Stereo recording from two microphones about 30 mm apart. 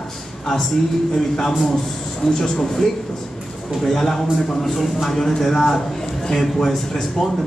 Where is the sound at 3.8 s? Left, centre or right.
Centre.